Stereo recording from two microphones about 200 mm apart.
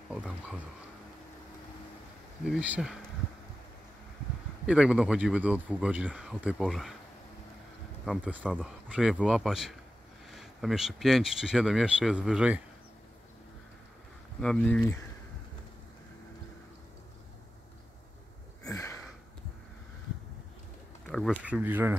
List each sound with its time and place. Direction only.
0.1 s speech: 5° right (ahead or behind)
2.4 s speech: 5° right (ahead or behind)
4.6 s speech: 5° right (ahead or behind)
8.0 s speech: 5° right (ahead or behind)
14.4 s speech: 5° left (ahead or behind)
18.6 s a sound: 15° left (ahead or behind)
21.1 s speech: centre (ahead or behind)